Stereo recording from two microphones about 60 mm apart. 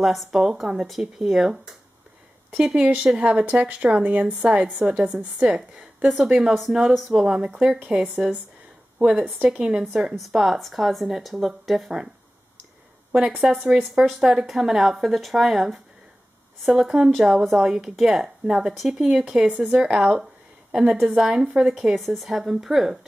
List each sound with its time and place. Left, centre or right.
0.0 s a woman's voice: centre
7.4 s a woman's voice: centre
13.7 s speech: centre
19.4 s a woman's voice: right
21.9 s speech: centre